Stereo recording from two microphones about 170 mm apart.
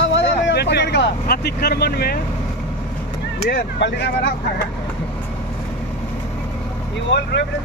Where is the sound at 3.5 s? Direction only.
85° left.